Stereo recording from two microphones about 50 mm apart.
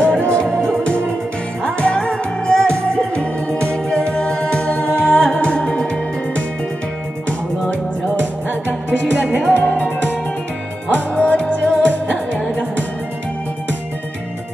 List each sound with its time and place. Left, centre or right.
0.0 s music: left
1.6 s music: centre
9.5 s music: left